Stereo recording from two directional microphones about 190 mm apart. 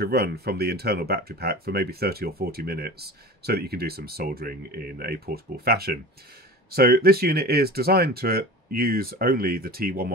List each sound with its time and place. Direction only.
0.0 s speech: 55° right (ahead or behind)